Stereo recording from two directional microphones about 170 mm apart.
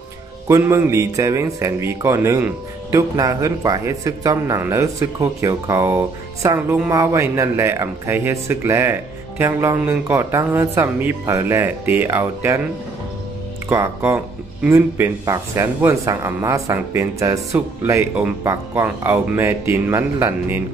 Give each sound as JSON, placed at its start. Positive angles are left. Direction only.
{"t": 0.5, "sound": "speech", "side_deg": -15}
{"t": 13.7, "sound": "speech", "side_deg": -15}